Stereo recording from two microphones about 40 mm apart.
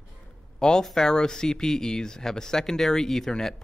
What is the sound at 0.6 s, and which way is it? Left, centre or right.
Speech, centre.